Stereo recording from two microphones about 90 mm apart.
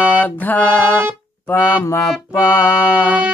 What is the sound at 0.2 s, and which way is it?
Music, 20° left (ahead or behind).